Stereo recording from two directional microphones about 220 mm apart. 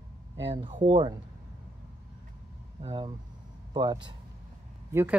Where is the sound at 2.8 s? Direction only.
25° right (ahead or behind).